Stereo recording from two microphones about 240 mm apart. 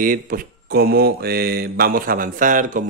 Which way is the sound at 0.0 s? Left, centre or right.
Right.